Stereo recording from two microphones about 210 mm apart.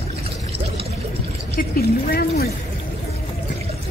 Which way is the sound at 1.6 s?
45° left (ahead or behind).